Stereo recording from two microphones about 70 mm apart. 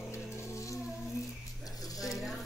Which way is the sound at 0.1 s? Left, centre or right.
Left.